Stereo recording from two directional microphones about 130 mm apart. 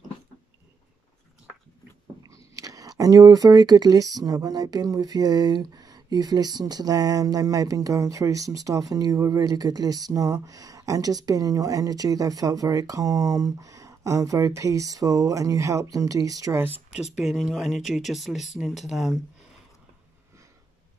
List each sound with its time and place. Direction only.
2.2 s speech: 25° right (ahead or behind)
16.6 s speech: 10° right (ahead or behind)